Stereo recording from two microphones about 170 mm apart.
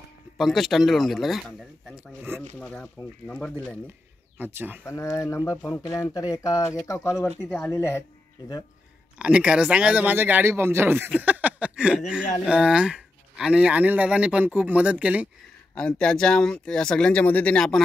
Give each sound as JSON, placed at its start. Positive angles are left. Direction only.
{"t": 0.4, "sound": "speech", "side_deg": 0}
{"t": 4.4, "sound": "speech", "side_deg": -10}
{"t": 4.8, "sound": "speech", "side_deg": 15}
{"t": 7.4, "sound": "speech", "side_deg": 5}
{"t": 7.7, "sound": "speech", "side_deg": 15}
{"t": 9.2, "sound": "speech", "side_deg": -5}
{"t": 15.7, "sound": "speech", "side_deg": 5}